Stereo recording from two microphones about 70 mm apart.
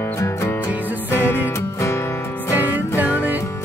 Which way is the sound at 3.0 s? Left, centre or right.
Right.